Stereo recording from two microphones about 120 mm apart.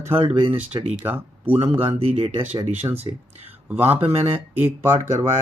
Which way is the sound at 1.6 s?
50° right (ahead or behind).